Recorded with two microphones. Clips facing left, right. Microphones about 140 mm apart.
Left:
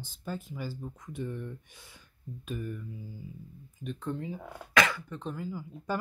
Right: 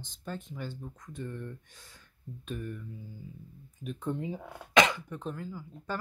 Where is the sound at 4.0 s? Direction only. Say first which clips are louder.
Right 2 dB; 15° right (ahead or behind).